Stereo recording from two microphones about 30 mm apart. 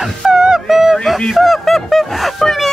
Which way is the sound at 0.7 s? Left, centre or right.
Centre.